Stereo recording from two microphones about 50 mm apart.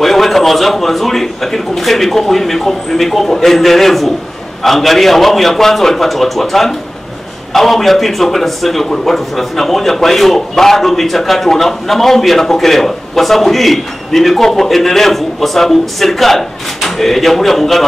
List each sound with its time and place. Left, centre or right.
0.0 s a man's voice: centre